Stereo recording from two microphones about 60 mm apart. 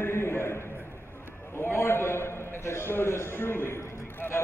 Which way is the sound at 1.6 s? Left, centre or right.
Left.